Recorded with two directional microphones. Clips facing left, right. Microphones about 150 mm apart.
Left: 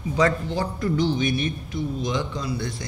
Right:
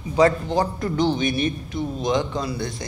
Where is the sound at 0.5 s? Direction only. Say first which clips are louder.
Right 2 dB; 45° right (ahead or behind).